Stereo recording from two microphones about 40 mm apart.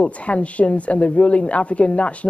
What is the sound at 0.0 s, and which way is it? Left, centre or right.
Speech, left.